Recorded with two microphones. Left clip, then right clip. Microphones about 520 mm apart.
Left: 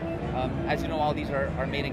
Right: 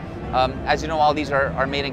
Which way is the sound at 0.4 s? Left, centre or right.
Right.